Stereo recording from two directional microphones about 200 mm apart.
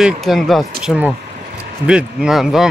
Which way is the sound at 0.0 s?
Centre (ahead or behind).